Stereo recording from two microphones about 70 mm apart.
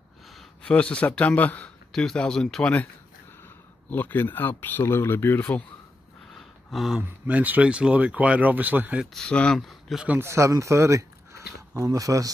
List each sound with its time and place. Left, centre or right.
0.6 s speech: centre
1.9 s speech: centre
3.9 s speech: left
6.3 s a sound: centre
7.0 s speech: centre
9.1 s speech: centre
9.6 s speech: centre
10.2 s speech: right